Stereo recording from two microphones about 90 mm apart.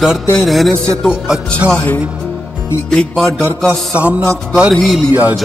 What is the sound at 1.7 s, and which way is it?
Music, 15° left (ahead or behind).